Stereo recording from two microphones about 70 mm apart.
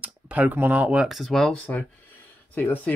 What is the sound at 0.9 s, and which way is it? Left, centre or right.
Speech, centre.